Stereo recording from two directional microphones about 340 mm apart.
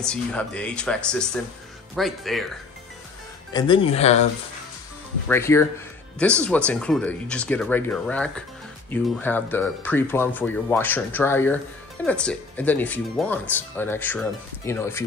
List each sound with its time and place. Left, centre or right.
0.0 s speech: centre
3.5 s speech: centre
5.3 s speech: centre